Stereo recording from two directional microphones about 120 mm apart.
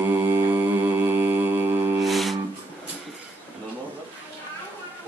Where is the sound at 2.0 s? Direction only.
Centre (ahead or behind).